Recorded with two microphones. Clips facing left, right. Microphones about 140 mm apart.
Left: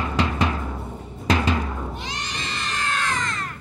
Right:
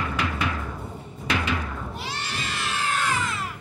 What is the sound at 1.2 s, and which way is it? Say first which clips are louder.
Timpani: left 5 dB; 35° left (ahead or behind).